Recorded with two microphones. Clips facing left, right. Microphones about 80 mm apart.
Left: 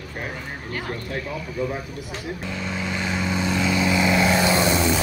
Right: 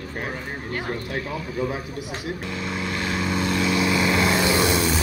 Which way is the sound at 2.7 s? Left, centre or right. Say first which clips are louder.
Even; centre.